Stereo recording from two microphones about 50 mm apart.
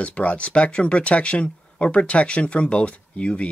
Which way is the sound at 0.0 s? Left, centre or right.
Left.